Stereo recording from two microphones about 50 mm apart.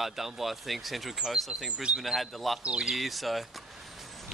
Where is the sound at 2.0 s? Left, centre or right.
Centre.